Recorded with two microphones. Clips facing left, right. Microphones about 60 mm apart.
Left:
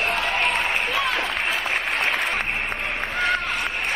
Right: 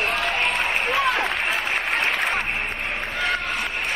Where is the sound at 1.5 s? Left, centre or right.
Right.